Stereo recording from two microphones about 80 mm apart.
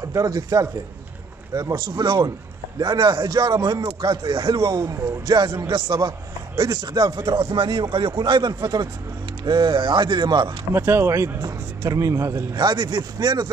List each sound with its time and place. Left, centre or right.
0.1 s a man's voice: right
2.0 s a man's voice: right
2.8 s a man's voice: right
9.4 s speech: right
10.7 s speech: right
12.5 s a man's voice: right